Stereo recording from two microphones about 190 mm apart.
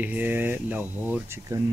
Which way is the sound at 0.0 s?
10° right (ahead or behind).